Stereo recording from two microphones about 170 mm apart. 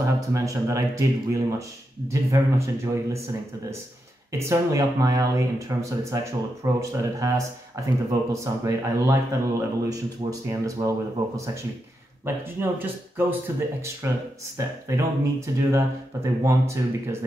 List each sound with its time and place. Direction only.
0.0 s speech: 20° right (ahead or behind)
4.3 s speech: 15° right (ahead or behind)